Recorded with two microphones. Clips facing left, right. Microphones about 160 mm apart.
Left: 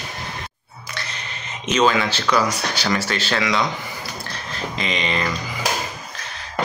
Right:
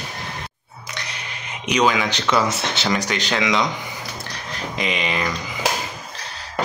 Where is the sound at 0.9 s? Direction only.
15° right (ahead or behind).